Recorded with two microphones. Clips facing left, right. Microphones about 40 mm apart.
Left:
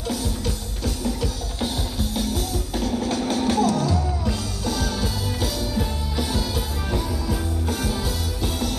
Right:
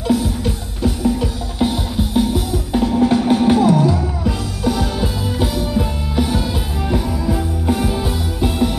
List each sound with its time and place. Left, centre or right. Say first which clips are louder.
0.8 s music: right 8 dB; right
7.6 s music: right 9 dB; right